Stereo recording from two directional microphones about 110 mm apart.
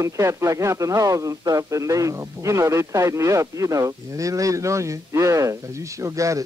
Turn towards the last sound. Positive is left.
turn(degrees=-30)  # may be behind; listen again after turning